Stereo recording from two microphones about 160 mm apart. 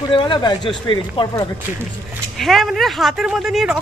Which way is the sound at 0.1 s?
25° left (ahead or behind).